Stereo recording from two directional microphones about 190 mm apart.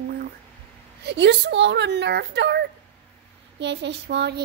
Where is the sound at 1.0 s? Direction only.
65° right (ahead or behind).